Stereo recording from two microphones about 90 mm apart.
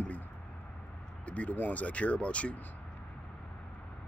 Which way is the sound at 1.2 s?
15° left (ahead or behind).